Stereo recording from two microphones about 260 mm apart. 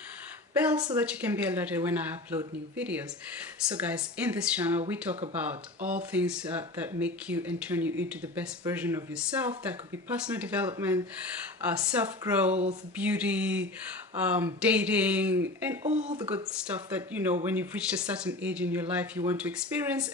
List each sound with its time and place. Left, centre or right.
0.6 s speech: centre
6.1 s speech: centre
15.8 s speech: right
16.2 s speech: centre